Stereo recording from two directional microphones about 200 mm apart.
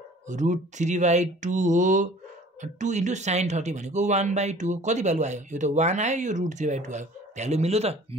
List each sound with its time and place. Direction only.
0.3 s speech: 35° right (ahead or behind)